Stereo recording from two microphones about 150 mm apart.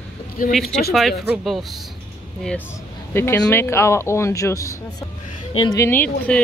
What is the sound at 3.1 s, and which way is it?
Speech, 15° left (ahead or behind).